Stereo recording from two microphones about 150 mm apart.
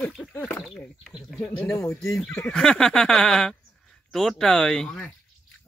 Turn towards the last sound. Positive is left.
turn(degrees=5)  # may be behind; listen again after turning